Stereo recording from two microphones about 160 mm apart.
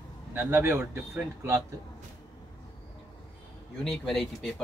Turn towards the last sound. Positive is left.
turn(degrees=5)  # may be behind; listen again after turning